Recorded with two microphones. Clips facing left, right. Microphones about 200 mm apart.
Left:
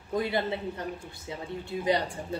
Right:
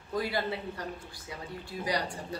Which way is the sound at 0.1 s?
20° left (ahead or behind).